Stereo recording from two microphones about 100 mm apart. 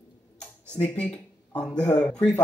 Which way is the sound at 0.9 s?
10° left (ahead or behind).